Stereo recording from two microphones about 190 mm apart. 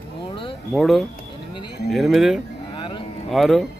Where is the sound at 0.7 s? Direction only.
Centre (ahead or behind).